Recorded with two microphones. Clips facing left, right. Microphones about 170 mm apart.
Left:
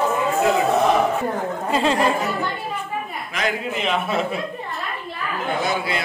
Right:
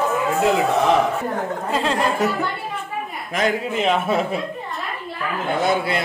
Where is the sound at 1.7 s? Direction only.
Centre (ahead or behind).